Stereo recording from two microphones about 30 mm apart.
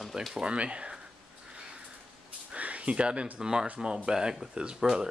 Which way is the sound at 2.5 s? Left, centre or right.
Right.